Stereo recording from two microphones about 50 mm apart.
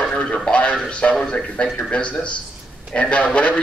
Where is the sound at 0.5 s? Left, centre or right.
Left.